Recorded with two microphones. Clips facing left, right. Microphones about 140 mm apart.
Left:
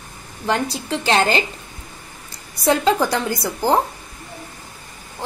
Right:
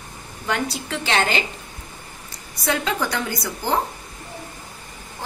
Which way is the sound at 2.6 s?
30° left (ahead or behind).